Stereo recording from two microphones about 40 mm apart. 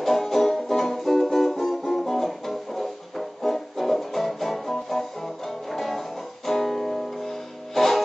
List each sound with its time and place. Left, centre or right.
0.0 s music: centre